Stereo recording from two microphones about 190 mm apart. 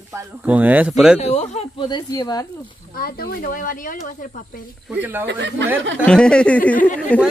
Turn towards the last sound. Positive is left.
turn(degrees=10)  # may be behind; listen again after turning